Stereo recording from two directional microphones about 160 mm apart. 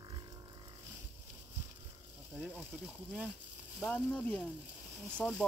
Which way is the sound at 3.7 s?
5° left (ahead or behind).